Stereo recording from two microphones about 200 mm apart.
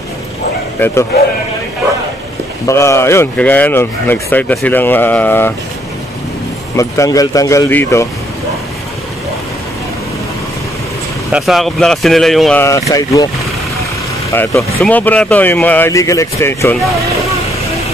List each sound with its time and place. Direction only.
0.7 s a man's voice: 10° left (ahead or behind)
2.6 s speech: 15° left (ahead or behind)
6.8 s speech: 15° left (ahead or behind)
11.3 s speech: centre (ahead or behind)
12.9 s speech: 15° left (ahead or behind)
14.3 s speech: 10° left (ahead or behind)